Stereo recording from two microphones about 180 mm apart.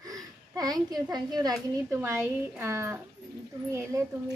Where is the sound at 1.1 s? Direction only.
20° right (ahead or behind).